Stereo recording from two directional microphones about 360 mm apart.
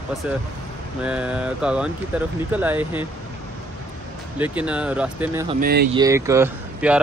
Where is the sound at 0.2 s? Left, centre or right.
Centre.